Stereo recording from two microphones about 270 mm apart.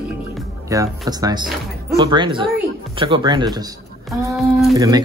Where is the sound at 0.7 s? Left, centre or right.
Centre.